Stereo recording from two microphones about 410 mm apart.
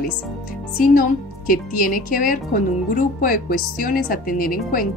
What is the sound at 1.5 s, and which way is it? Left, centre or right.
Speech, centre.